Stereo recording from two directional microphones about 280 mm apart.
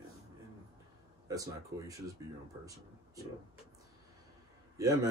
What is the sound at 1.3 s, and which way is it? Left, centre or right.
Speech, centre.